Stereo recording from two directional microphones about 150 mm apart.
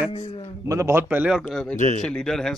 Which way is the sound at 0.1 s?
35° left (ahead or behind).